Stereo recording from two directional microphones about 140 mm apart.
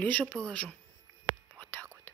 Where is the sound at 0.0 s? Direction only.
10° left (ahead or behind).